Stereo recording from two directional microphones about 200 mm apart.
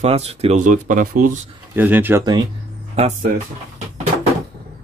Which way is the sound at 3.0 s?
35° right (ahead or behind).